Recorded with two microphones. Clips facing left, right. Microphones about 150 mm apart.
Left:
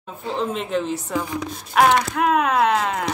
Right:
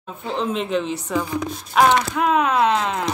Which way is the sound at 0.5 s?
45° left (ahead or behind).